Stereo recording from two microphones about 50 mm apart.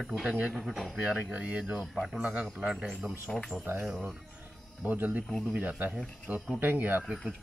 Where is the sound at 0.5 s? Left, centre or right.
Centre.